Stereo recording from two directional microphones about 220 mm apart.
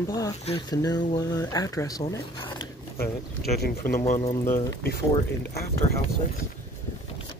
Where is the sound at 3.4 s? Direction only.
45° left (ahead or behind).